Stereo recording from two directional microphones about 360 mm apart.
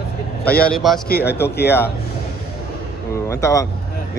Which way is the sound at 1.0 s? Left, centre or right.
Left.